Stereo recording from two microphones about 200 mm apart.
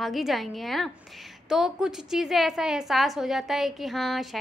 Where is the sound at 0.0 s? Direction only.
Centre (ahead or behind).